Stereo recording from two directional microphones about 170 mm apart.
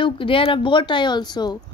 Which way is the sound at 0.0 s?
30° left (ahead or behind).